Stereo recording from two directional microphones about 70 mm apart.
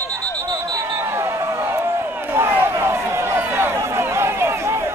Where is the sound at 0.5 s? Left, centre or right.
Right.